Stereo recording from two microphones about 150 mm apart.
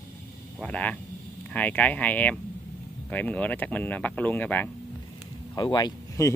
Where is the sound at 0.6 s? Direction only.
10° left (ahead or behind).